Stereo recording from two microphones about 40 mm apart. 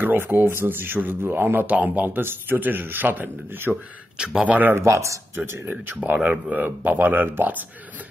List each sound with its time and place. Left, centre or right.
0.0 s speech: right
0.9 s speech: right
1.7 s a man's voice: right
2.0 s speech: right
4.2 s a man's voice: centre
4.5 s speech: right
5.3 s speech: right
6.0 s speech: right